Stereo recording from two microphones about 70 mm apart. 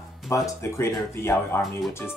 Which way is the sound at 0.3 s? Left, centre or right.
Left.